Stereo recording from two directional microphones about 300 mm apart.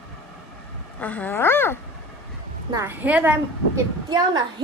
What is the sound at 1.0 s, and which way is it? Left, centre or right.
Speech, centre.